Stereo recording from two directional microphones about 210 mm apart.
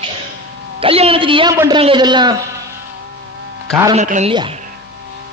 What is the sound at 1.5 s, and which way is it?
Speech, 15° right (ahead or behind).